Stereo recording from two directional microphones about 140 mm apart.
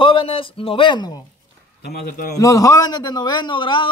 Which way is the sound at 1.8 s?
90° left.